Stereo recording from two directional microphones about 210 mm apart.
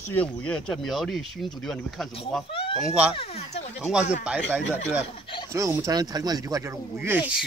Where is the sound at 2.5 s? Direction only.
25° left (ahead or behind).